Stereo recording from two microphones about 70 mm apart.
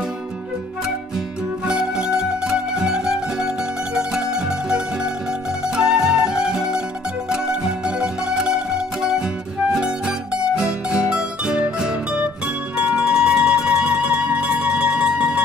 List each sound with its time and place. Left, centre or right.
1.7 s music: centre